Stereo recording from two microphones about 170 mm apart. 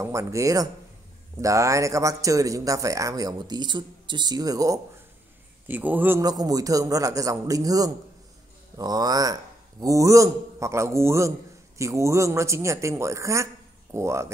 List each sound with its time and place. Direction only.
0.0 s speech: 15° right (ahead or behind)
5.7 s speech: 10° right (ahead or behind)
6.2 s speech: 20° right (ahead or behind)